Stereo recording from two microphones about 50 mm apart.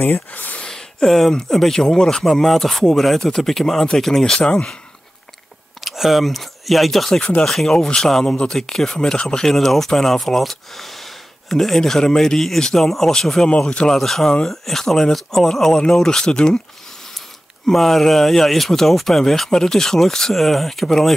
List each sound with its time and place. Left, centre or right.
0.0 s speech: left
0.6 s a sound: centre
1.3 s speech: centre
4.4 s speech: left
5.9 s speech: centre
17.6 s speech: centre